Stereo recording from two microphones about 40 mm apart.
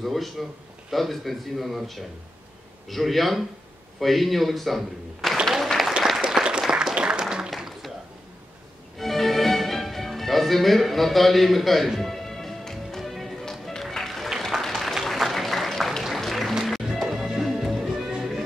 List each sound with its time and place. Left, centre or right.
0.0 s a man's voice: centre
5.4 s applause: centre
6.2 s applause: right
8.9 s music: centre
14.4 s applause: centre
15.1 s a sound: centre
16.2 s music: centre
17.8 s music: centre